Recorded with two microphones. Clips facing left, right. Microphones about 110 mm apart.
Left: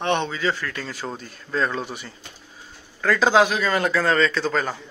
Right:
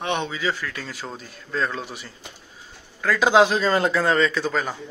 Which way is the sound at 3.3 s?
25° right (ahead or behind).